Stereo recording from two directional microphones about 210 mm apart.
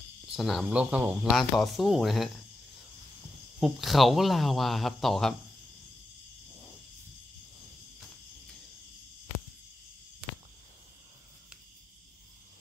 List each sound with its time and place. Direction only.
0.3 s speech: centre (ahead or behind)
3.5 s speech: centre (ahead or behind)